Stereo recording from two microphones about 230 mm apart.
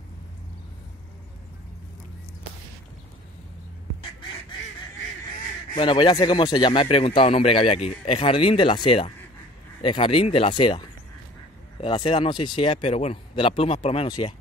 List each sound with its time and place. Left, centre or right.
5.7 s speech: left